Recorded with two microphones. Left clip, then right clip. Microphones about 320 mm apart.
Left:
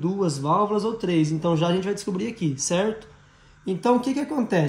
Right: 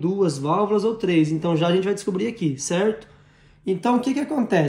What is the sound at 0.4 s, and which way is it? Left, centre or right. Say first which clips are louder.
Speech: even; right.